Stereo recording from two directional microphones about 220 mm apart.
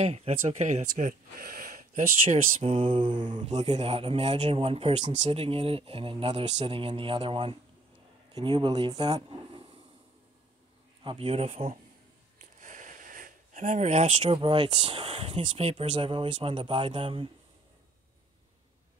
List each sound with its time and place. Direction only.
0.0 s speech: 30° right (ahead or behind)
11.1 s speech: 25° right (ahead or behind)